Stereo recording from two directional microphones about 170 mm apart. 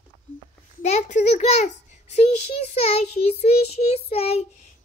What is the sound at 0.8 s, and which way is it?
A child's voice, 40° left (ahead or behind).